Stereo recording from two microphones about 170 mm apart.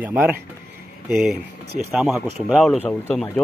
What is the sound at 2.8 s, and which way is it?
Speech, 10° left (ahead or behind).